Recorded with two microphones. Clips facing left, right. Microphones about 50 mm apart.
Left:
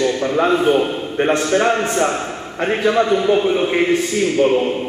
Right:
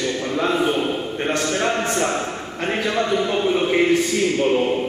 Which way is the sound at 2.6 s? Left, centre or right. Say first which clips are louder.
Left 6 dB; centre.